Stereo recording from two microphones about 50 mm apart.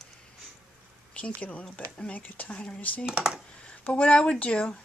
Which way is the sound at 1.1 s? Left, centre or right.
Left.